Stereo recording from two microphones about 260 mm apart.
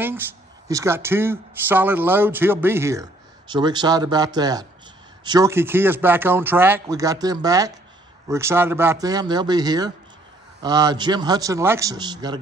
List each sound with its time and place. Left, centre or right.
0.7 s speech: centre